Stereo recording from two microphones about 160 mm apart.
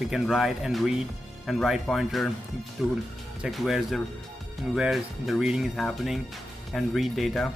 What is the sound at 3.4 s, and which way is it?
Speech, centre (ahead or behind).